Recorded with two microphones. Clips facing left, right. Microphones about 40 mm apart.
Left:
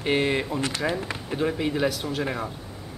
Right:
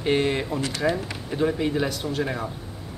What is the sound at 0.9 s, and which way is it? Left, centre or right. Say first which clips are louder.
Speech: right 2 dB; centre.